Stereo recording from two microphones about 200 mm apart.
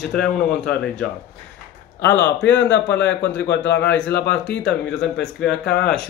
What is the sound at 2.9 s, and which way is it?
A man's voice, 65° left (ahead or behind).